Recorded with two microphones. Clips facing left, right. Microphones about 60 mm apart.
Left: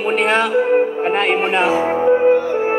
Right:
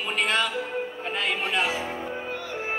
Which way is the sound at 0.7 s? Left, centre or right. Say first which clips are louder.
Left 14 dB; left.